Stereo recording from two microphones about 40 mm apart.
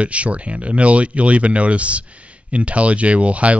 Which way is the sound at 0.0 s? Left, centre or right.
Right.